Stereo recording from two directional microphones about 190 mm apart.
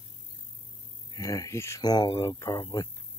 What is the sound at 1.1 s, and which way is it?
Speech, 20° left (ahead or behind).